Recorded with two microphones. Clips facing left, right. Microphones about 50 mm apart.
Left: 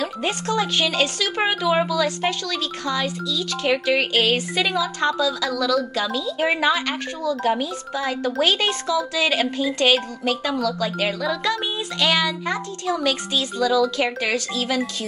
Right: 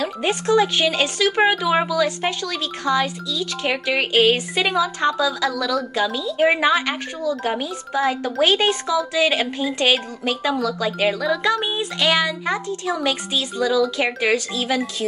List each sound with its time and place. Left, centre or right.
0.0 s a woman's voice: centre